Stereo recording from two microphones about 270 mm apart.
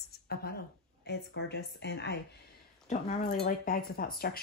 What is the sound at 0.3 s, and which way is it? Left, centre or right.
Speech, left.